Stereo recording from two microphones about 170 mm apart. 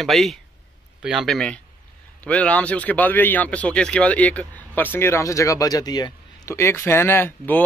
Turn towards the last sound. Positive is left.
turn(degrees=10)  # may be behind; listen again after turning